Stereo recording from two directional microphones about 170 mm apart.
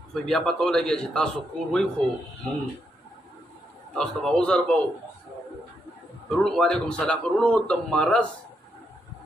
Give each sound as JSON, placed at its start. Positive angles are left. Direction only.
{"t": 0.1, "sound": "a man's voice", "side_deg": 5}
{"t": 3.9, "sound": "a man's voice", "side_deg": 0}
{"t": 6.2, "sound": "a man's voice", "side_deg": 5}